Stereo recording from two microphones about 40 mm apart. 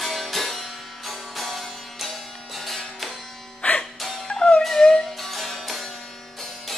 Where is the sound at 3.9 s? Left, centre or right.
Centre.